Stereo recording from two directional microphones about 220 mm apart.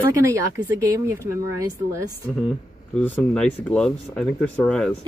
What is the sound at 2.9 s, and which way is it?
Speech, 5° left (ahead or behind).